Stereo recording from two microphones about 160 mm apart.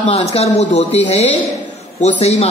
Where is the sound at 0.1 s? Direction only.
40° left (ahead or behind).